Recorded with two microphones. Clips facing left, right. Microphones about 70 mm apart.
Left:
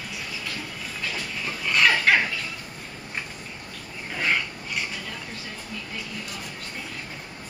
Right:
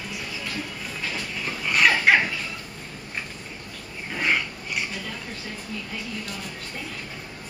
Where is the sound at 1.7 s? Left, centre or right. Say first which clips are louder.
Right 1 dB; centre.